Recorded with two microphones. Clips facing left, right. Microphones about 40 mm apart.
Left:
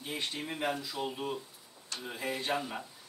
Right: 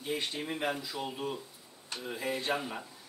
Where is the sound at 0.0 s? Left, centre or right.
Centre.